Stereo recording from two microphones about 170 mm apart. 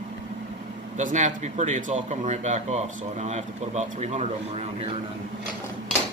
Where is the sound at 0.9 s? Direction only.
45° right (ahead or behind).